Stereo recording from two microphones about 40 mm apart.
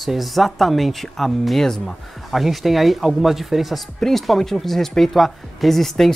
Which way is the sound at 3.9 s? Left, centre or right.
Centre.